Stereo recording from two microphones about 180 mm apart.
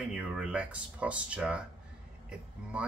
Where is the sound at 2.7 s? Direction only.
5° right (ahead or behind).